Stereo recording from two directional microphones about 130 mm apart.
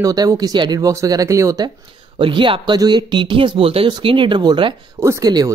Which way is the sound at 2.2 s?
40° right (ahead or behind).